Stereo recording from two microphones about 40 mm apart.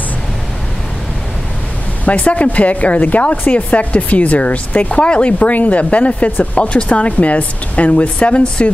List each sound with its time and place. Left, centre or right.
2.0 s speech: left